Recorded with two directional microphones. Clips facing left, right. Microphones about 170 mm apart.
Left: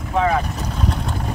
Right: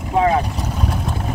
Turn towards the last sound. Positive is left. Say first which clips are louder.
# right 3 dB
turn(degrees=-20)  # may be behind; listen again after turning